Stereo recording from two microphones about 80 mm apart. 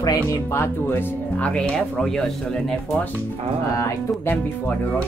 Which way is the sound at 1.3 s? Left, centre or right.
Centre.